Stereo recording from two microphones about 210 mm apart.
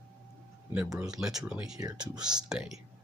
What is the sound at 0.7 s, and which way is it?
Speech, 10° right (ahead or behind).